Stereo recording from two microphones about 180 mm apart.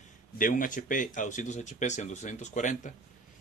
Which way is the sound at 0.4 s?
45° left (ahead or behind).